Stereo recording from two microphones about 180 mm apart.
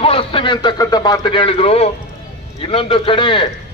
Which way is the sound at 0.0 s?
30° left (ahead or behind).